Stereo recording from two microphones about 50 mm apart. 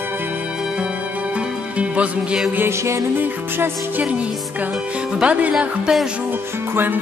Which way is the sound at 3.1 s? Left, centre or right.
Right.